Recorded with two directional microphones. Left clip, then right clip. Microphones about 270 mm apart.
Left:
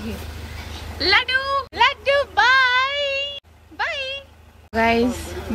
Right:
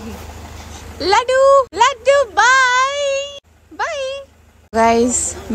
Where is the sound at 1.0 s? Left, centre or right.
Right.